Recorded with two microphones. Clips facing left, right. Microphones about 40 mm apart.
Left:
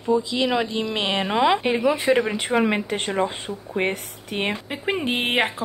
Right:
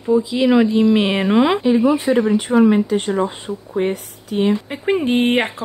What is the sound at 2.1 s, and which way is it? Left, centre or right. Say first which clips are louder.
Speech: right 4 dB; left.